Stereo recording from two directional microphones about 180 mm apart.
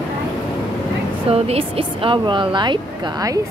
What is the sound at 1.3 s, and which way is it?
Speech, 35° right (ahead or behind).